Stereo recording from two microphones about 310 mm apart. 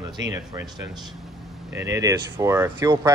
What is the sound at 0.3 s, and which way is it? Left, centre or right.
Speech, centre.